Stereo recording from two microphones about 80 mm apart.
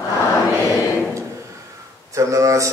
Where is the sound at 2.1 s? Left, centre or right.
Right.